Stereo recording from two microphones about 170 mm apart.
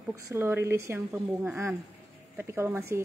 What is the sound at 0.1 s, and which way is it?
A woman's voice, 15° right (ahead or behind).